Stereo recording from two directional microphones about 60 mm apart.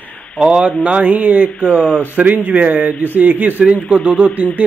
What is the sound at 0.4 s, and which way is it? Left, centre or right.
A man's voice, centre.